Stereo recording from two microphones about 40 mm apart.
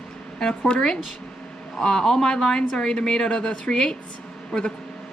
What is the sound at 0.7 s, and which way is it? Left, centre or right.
A woman's voice, centre.